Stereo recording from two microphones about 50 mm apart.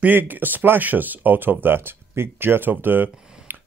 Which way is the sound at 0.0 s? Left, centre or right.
Right.